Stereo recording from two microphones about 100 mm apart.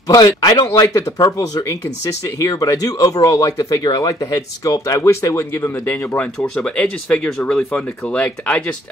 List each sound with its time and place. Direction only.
0.1 s speech: 40° left (ahead or behind)
6.1 s speech: 10° left (ahead or behind)